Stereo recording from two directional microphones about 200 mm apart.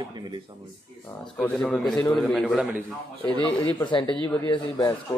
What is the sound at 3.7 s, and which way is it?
Speech, 25° left (ahead or behind).